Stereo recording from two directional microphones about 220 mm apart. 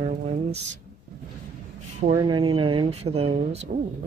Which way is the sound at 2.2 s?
20° right (ahead or behind).